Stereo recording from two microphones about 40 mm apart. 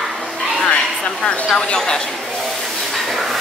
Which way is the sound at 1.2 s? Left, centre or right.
Left.